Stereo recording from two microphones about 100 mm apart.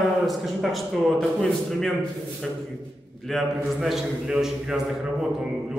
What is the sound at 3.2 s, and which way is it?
A man's voice, centre (ahead or behind).